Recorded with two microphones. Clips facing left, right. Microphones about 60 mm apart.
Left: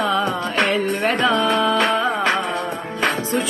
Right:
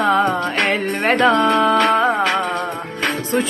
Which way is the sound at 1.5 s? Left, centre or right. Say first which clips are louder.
Right 3 dB; right.